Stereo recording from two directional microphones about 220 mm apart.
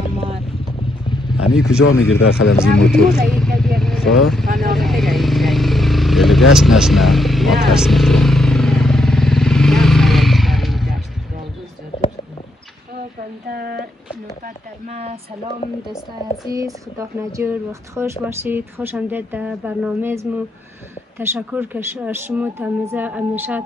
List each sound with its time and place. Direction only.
1.4 s speech: 5° right (ahead or behind)
1.9 s speech: 70° left (ahead or behind)
2.6 s speech: 5° left (ahead or behind)
3.3 s vehicle: centre (ahead or behind)
13.5 s a sound: 40° right (ahead or behind)
14.4 s speech: 30° right (ahead or behind)
16.4 s speech: 15° right (ahead or behind)